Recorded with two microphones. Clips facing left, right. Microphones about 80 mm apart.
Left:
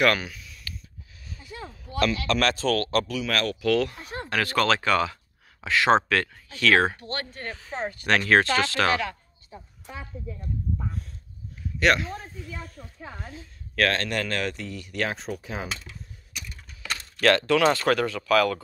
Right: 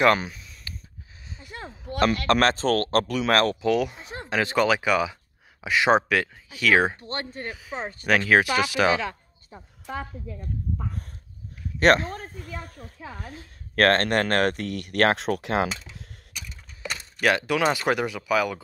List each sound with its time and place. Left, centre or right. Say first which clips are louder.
0.0 s a sound: right 3 dB; right
1.4 s a sound: right 1 dB; right
2.4 s speech: right 2 dB; right
3.6 s speech: even; centre
7.0 s speech: right 1 dB; right
7.4 s speech: left 1 dB; centre
11.8 s a woman's voice: right 4 dB; right
16.9 s speech: left 2 dB; centre